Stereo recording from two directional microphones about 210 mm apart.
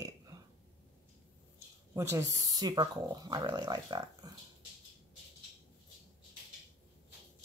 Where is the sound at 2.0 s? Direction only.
15° right (ahead or behind).